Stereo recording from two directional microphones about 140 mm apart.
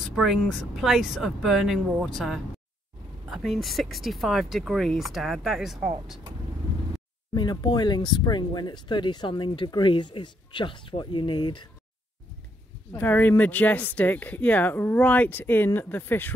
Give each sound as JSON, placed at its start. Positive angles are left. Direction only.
{"t": 0.0, "sound": "speech", "side_deg": 0}
{"t": 7.3, "sound": "speech", "side_deg": 30}
{"t": 12.9, "sound": "speech", "side_deg": 15}